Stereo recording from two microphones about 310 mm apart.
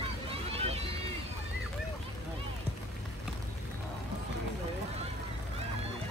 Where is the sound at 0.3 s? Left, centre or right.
Centre.